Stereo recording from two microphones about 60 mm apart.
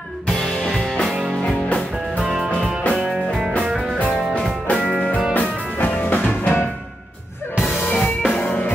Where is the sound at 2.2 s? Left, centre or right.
Centre.